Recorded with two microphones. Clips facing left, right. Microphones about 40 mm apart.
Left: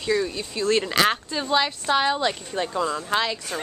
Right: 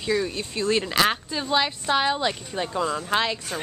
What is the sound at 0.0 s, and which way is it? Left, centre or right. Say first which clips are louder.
Speech: left 1 dB; centre.